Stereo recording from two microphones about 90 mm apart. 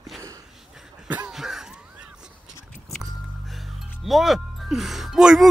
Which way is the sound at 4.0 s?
Centre (ahead or behind).